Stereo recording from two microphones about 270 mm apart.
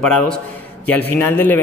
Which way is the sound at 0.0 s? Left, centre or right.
Centre.